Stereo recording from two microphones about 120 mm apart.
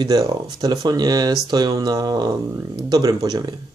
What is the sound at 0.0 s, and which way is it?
Speech, 35° right (ahead or behind).